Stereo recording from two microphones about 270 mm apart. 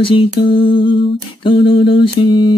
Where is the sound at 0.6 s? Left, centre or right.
Left.